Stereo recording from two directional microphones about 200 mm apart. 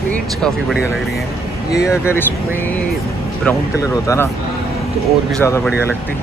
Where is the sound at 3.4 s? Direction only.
15° left (ahead or behind).